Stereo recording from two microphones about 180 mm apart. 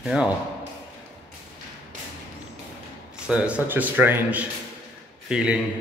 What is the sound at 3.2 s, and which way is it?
A man's voice, 5° right (ahead or behind).